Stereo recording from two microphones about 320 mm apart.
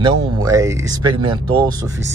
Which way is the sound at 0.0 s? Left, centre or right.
Centre.